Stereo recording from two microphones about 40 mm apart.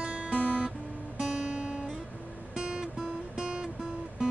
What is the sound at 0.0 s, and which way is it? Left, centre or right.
Music, right.